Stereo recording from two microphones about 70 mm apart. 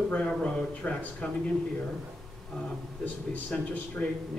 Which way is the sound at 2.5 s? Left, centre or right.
Centre.